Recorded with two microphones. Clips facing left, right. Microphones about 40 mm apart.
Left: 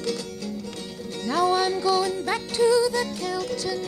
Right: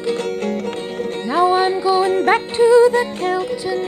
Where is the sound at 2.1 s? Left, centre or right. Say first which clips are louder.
Right 10 dB; right.